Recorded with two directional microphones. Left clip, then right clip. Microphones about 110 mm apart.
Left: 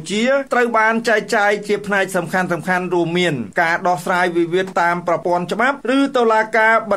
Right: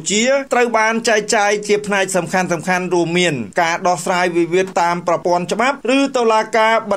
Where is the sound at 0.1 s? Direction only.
30° right (ahead or behind).